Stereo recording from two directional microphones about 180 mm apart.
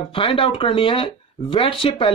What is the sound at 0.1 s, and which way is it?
Speech, 30° left (ahead or behind).